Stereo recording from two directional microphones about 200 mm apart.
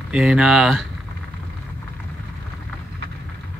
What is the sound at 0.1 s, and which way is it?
Speech, 5° right (ahead or behind).